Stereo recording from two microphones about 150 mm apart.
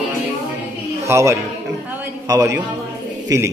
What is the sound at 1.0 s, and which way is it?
A man's voice, 20° right (ahead or behind).